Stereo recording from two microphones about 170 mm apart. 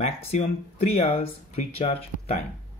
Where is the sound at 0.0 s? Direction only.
40° left (ahead or behind).